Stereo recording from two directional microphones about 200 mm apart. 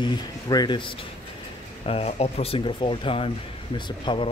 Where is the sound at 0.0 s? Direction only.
20° left (ahead or behind).